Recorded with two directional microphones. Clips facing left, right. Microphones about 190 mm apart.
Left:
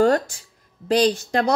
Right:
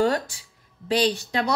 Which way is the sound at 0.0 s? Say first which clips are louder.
Left 5 dB; 45° left (ahead or behind).